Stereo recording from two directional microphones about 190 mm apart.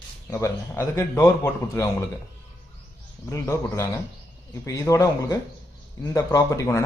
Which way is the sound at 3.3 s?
15° left (ahead or behind).